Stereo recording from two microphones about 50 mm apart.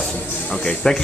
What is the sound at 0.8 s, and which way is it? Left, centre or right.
Speech, centre.